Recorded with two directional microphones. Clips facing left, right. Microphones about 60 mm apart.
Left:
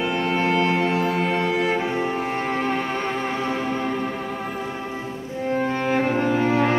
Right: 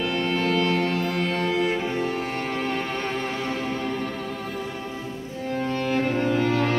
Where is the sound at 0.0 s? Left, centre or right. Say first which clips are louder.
Left 2 dB; left.